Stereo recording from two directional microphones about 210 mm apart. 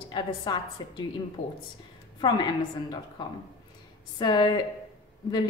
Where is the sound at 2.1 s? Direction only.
20° left (ahead or behind).